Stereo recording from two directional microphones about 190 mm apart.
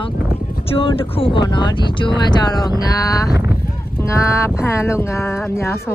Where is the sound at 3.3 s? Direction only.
10° right (ahead or behind).